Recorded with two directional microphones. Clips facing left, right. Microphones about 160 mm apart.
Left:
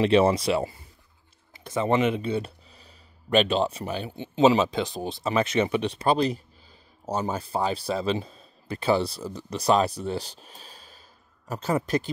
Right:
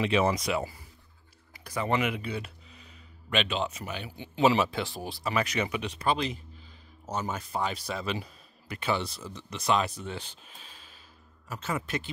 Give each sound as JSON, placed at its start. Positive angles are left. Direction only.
{"t": 0.0, "sound": "speech", "side_deg": 30}